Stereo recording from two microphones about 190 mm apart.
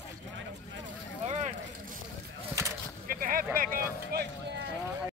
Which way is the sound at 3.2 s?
45° right (ahead or behind).